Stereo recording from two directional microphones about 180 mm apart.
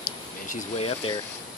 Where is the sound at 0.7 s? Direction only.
30° left (ahead or behind).